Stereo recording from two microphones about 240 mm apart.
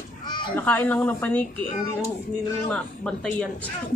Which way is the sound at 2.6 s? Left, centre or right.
Centre.